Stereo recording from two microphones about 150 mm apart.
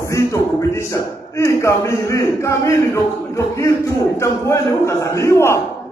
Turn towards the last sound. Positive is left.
turn(degrees=20)  # may be behind; listen again after turning